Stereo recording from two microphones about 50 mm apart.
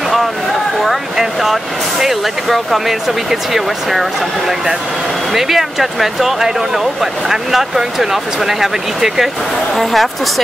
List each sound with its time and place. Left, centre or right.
0.8 s speech: centre
5.3 s speech: centre